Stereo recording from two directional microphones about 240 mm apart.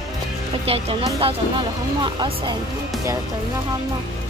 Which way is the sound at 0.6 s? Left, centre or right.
Right.